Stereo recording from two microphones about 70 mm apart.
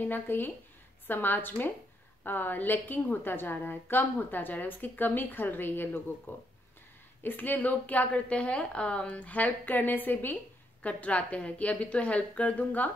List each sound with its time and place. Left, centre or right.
0.0 s a woman's voice: left